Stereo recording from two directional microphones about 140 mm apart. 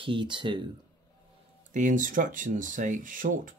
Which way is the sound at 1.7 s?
65° right (ahead or behind).